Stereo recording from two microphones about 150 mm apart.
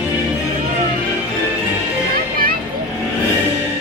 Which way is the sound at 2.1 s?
75° right (ahead or behind).